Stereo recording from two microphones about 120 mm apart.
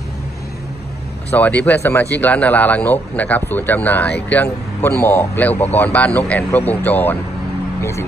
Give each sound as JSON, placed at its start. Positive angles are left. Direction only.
{"t": 1.3, "sound": "speech", "side_deg": 15}